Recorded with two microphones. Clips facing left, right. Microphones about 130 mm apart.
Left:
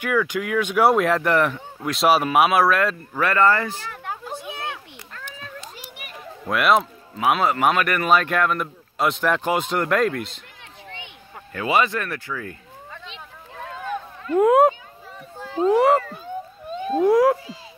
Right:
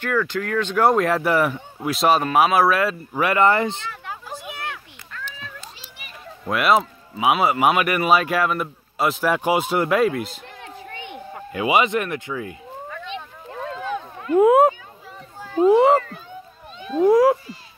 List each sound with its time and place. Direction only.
0.0 s a man's voice: 10° left (ahead or behind); by 2.0 s 10° right (ahead or behind)
2.0 s a man's voice: 5° left (ahead or behind); by 3.9 s 25° right (ahead or behind)
3.9 s a sound: 50° left (ahead or behind)
4.3 s a sound: 25° left (ahead or behind)
6.4 s a man's voice: centre (ahead or behind)
10.9 s a sound: 50° right (ahead or behind)
11.3 s speech: 15° right (ahead or behind)
14.3 s a man's voice: 5° right (ahead or behind)
16.7 s cat: 45° left (ahead or behind)
17.0 s a man's voice: centre (ahead or behind)